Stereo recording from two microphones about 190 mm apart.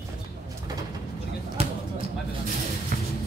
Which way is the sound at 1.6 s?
30° right (ahead or behind).